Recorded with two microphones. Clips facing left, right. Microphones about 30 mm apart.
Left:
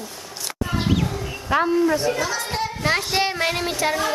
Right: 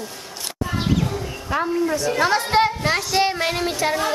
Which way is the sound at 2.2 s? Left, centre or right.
Right.